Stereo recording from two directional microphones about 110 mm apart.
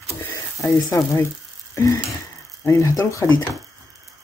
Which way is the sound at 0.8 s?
30° left (ahead or behind).